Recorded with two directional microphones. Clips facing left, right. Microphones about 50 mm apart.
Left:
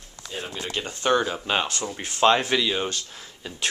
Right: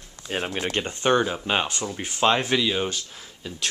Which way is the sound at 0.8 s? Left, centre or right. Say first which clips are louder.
Even; right.